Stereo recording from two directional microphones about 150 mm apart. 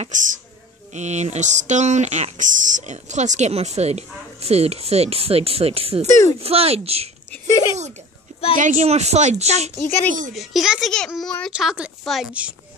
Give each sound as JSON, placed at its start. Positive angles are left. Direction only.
{"t": 0.0, "sound": "speech", "side_deg": -55}
{"t": 6.0, "sound": "speech", "side_deg": 20}
{"t": 6.4, "sound": "speech", "side_deg": -40}
{"t": 7.2, "sound": "a sound", "side_deg": 20}
{"t": 8.5, "sound": "speech", "side_deg": -55}
{"t": 10.3, "sound": "a child's voice", "side_deg": 0}
{"t": 11.5, "sound": "a woman's voice", "side_deg": -5}